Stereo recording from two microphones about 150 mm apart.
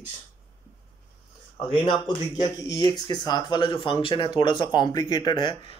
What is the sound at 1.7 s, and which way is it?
Speech, 30° left (ahead or behind).